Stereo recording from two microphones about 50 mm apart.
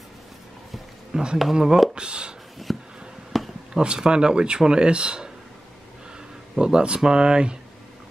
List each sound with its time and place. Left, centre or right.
1.1 s speech: centre
2.0 s speech: centre
2.7 s a sound: centre
3.7 s speech: centre
6.6 s speech: centre